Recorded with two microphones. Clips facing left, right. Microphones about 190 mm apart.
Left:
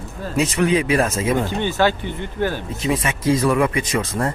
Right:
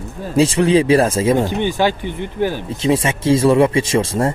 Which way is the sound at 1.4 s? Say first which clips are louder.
Right 2 dB; 15° right (ahead or behind).